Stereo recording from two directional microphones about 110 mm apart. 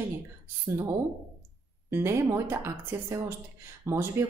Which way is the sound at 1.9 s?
25° right (ahead or behind).